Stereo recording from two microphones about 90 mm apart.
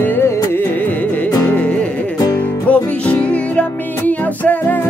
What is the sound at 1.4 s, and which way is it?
Music, 15° left (ahead or behind).